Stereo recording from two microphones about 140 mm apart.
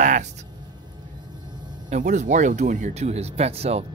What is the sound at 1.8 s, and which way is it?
Speech, 60° right (ahead or behind).